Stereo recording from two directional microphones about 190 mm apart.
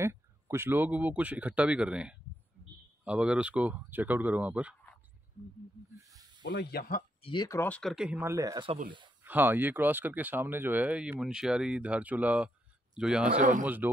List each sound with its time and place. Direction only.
0.0 s speech: 15° right (ahead or behind)
6.5 s speech: 55° left (ahead or behind)
7.2 s speech: 20° left (ahead or behind); by 8.7 s 20° right (ahead or behind)
9.2 s speech: 10° right (ahead or behind)
13.4 s speech: 45° right (ahead or behind)